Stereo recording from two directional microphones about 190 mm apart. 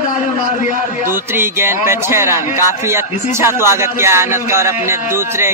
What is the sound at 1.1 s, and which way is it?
A man's voice, 10° right (ahead or behind).